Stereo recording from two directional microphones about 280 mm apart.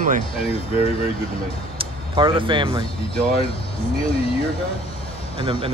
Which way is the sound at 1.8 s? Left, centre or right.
Centre.